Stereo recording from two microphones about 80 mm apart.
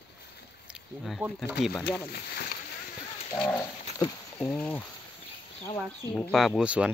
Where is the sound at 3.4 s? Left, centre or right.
Centre.